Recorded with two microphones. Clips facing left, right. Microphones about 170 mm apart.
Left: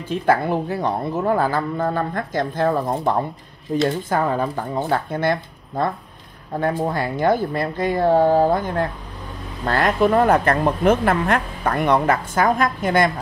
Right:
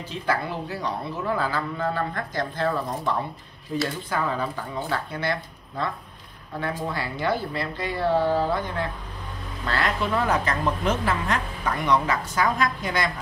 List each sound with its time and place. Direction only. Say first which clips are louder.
0.1 s a woman's voice: left 9 dB; 55° left (ahead or behind)